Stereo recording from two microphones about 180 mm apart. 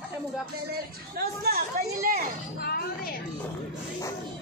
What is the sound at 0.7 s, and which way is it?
Speech, 55° right (ahead or behind).